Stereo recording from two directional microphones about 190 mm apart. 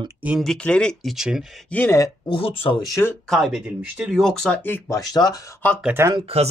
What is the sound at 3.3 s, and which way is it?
Speech, centre (ahead or behind).